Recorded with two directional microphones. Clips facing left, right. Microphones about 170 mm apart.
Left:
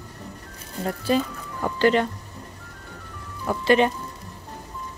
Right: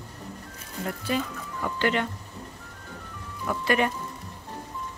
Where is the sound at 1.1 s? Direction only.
35° left (ahead or behind).